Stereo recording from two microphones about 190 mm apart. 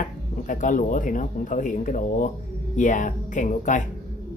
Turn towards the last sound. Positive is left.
turn(degrees=40)  # may be behind; listen again after turning